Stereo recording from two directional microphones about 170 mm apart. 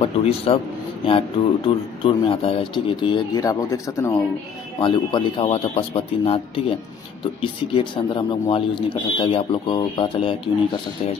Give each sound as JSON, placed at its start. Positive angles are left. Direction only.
{"t": 0.5, "sound": "a man's voice", "side_deg": 35}
{"t": 7.7, "sound": "a man's voice", "side_deg": 30}